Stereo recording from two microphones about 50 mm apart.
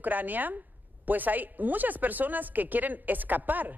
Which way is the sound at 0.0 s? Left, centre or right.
Right.